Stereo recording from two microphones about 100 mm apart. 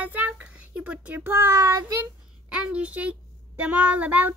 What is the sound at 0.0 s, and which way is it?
Child singing, 15° right (ahead or behind).